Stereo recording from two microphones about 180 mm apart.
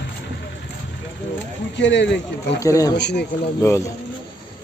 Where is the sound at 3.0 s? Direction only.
70° left (ahead or behind).